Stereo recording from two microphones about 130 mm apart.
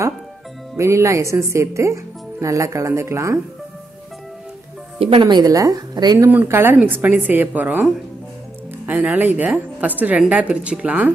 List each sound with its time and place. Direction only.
0.7 s speech: 20° right (ahead or behind)
4.9 s speech: 45° right (ahead or behind); by 6.3 s 30° right (ahead or behind)
6.3 s a woman's voice: 15° right (ahead or behind)